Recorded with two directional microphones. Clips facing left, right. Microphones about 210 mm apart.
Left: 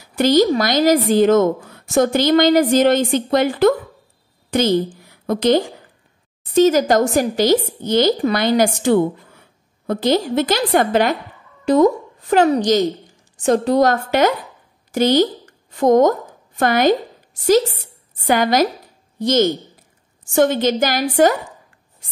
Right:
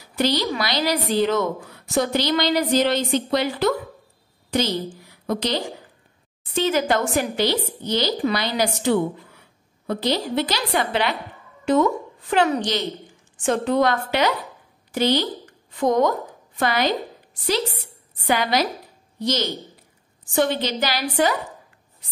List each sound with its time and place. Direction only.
0.1 s a woman's voice: 45° left (ahead or behind)